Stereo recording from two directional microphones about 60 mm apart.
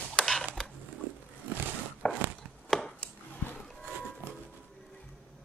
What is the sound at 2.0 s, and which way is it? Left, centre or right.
Walk, centre.